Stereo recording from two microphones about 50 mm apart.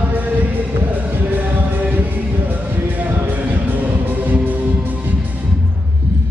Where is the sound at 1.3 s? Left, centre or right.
Right.